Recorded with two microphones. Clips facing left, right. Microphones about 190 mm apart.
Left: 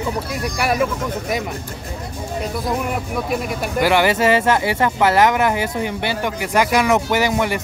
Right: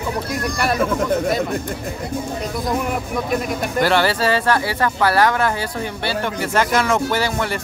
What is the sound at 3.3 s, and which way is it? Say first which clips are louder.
Speech: right 1 dB; 10° left (ahead or behind).